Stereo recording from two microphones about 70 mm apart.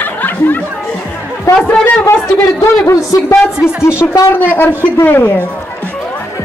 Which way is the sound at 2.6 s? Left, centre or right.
Left.